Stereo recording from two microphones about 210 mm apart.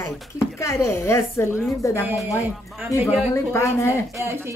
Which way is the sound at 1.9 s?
10° right (ahead or behind).